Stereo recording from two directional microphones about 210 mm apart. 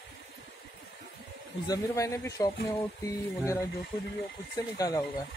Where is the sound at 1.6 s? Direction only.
15° left (ahead or behind).